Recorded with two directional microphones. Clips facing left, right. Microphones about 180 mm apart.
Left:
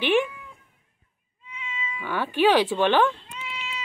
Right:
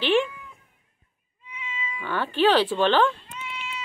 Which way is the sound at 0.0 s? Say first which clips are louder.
Even; 15° left (ahead or behind).